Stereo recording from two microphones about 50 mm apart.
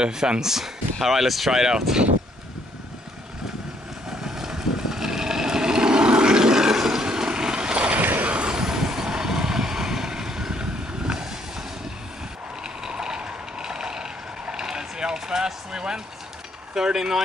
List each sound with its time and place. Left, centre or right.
0.0 s speech: centre
4.2 s vehicle: centre
8.0 s a sound: right
8.3 s vehicle: centre
12.8 s vehicle: centre
16.7 s a sound: centre